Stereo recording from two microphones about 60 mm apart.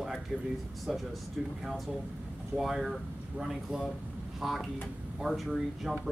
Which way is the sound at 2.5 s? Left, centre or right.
Centre.